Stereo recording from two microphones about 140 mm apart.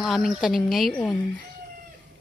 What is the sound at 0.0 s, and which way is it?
Speech, centre (ahead or behind).